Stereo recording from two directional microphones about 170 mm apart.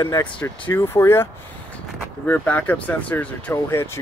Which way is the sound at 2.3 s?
10° left (ahead or behind).